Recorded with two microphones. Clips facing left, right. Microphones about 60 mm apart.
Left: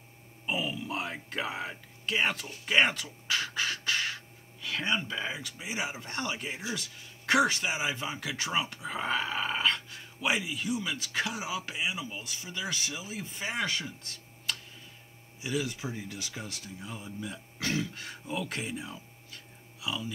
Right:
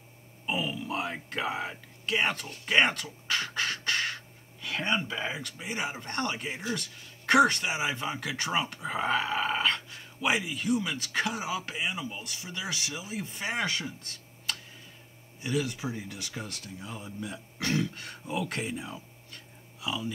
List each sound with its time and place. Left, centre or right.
0.5 s speech: centre